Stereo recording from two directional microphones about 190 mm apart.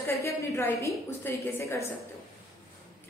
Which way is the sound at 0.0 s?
10° left (ahead or behind).